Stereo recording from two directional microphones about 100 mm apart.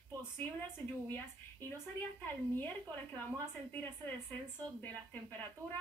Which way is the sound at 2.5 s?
20° left (ahead or behind).